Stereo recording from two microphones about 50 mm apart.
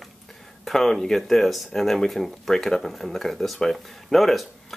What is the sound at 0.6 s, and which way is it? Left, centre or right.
Speech, centre.